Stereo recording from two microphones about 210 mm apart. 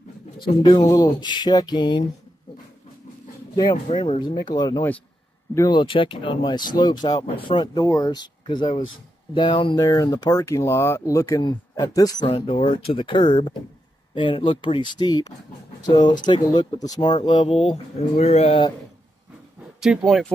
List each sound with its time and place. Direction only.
0.4 s speech: 25° left (ahead or behind)
3.5 s speech: 20° left (ahead or behind)
19.8 s speech: 5° right (ahead or behind)